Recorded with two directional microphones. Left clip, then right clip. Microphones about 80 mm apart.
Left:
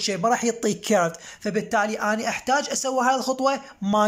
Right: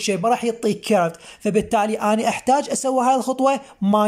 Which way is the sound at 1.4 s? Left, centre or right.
Right.